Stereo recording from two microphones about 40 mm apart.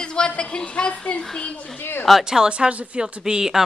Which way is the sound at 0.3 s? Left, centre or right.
Left.